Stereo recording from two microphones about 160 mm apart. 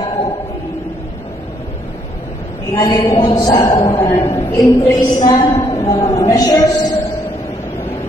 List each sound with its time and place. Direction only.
2.7 s a woman's voice: 25° left (ahead or behind)
4.4 s a woman's voice: 15° left (ahead or behind)